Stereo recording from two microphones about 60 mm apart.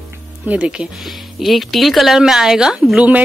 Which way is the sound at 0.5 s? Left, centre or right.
Centre.